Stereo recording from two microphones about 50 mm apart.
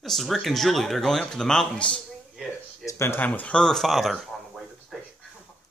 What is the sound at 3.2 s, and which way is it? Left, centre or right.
Speech, left.